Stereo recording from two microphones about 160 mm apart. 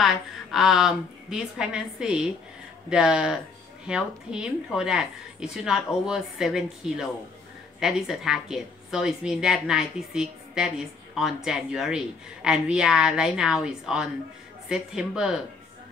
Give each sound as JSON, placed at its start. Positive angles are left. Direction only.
{"t": 0.0, "sound": "speech", "side_deg": 0}